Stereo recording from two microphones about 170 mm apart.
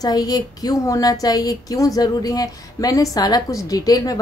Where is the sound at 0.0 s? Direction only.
20° left (ahead or behind).